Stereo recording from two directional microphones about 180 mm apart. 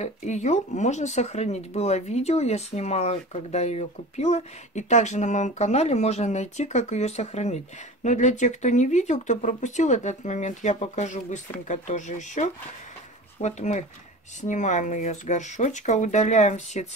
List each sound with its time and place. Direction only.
0.0 s speech: 40° left (ahead or behind)